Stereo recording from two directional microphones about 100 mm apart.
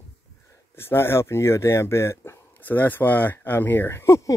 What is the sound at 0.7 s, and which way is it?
Speech, 25° left (ahead or behind).